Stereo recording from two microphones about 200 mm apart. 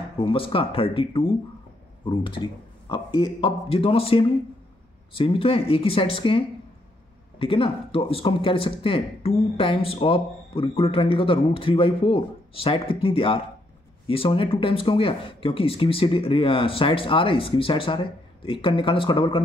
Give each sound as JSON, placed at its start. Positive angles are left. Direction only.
{"t": 0.2, "sound": "speech", "side_deg": 25}